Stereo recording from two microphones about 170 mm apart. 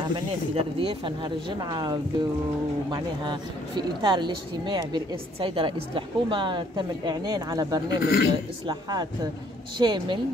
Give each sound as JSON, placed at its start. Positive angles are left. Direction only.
{"t": 0.0, "sound": "speech", "side_deg": -30}
{"t": 8.0, "sound": "a man's voice", "side_deg": 65}
{"t": 9.8, "sound": "speech", "side_deg": -25}